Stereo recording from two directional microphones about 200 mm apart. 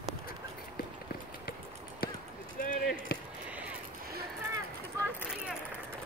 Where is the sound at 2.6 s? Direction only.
45° left (ahead or behind).